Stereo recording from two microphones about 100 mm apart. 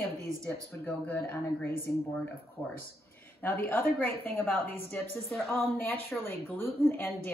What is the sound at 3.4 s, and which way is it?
A woman's voice, 20° left (ahead or behind).